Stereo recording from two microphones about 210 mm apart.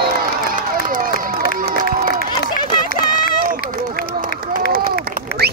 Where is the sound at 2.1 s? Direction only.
45° left (ahead or behind).